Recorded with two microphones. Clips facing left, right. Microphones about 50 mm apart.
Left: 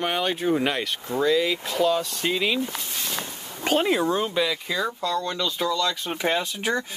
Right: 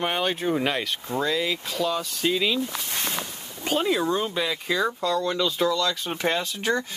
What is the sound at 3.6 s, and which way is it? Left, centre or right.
Speech, left.